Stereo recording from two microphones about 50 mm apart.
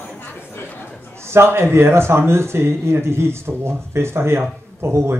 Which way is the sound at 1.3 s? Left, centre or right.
Right.